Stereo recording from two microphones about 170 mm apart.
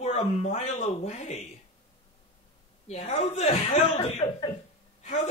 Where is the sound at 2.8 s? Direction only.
40° left (ahead or behind).